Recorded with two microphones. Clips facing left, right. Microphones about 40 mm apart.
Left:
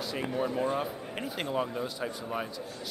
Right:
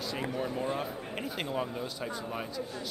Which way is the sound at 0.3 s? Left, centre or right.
Centre.